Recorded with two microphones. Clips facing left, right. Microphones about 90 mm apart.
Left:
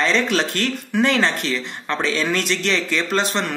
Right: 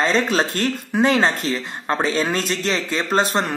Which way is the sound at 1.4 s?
35° right (ahead or behind).